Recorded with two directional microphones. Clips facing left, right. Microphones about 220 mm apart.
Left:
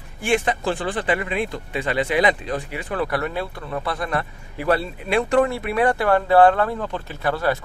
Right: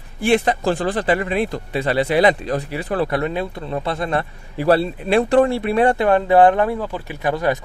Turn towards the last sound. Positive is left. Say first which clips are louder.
# right 2 dB
turn(degrees=-15)  # may be behind; listen again after turning